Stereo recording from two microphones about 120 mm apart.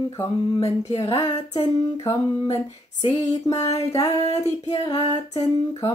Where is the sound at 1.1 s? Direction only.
30° left (ahead or behind).